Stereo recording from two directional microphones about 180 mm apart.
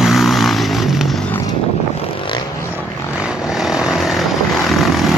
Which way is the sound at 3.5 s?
5° right (ahead or behind).